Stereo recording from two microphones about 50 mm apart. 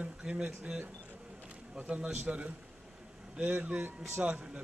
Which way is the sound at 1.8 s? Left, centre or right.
Right.